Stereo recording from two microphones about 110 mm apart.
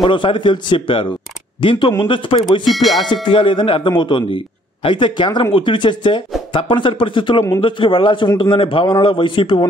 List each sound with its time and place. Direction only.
0.0 s speech: 50° left (ahead or behind)
2.6 s speech: centre (ahead or behind)
3.3 s speech: 50° left (ahead or behind)